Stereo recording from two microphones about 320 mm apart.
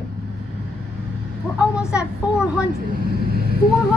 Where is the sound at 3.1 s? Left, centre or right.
Right.